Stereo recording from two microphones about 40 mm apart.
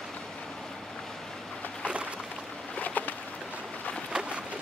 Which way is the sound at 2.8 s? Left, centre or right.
Left.